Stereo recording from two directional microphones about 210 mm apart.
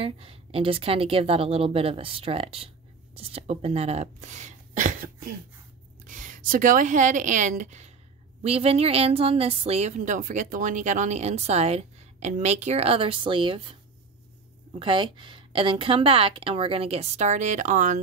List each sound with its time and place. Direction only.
0.0 s a woman's voice: 25° right (ahead or behind)
14.7 s a woman's voice: 25° right (ahead or behind)